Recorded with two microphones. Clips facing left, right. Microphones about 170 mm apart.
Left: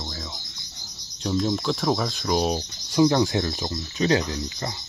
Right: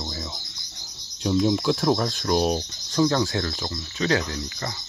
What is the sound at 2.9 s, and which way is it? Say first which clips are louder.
Speech: left 2 dB; 15° left (ahead or behind).